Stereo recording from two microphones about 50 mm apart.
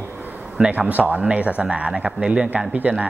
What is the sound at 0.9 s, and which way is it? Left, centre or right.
A man's voice, right.